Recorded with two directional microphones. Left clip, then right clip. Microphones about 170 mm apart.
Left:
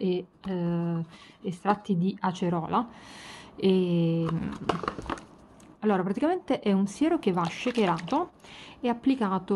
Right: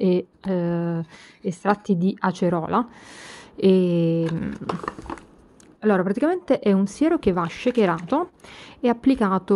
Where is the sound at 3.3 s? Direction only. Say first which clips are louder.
Right 7 dB; 35° right (ahead or behind).